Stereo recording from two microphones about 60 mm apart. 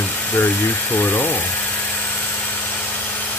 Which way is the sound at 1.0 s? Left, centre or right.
Left.